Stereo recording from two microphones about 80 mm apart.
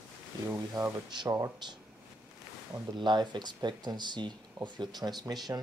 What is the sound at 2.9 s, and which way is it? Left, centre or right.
Speech, right.